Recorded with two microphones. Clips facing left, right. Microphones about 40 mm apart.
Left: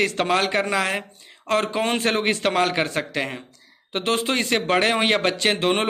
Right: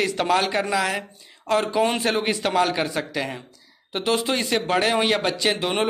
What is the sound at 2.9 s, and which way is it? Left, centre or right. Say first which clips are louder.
A man's voice: left 1 dB; left.